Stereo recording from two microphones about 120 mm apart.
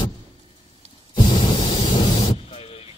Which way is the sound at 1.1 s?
40° left (ahead or behind).